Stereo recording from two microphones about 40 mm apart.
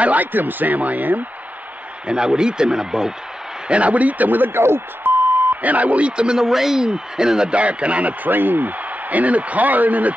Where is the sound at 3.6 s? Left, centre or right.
Right.